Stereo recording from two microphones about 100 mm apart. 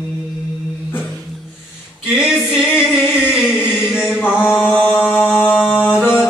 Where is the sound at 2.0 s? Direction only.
5° right (ahead or behind).